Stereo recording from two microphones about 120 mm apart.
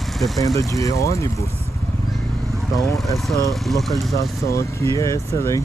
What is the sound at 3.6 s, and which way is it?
Speech, centre (ahead or behind).